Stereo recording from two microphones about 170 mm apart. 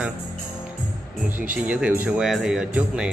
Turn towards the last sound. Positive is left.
turn(degrees=-5)  # may be behind; listen again after turning